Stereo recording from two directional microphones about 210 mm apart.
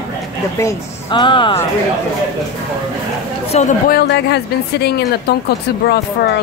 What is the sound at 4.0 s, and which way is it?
Speech, 50° left (ahead or behind).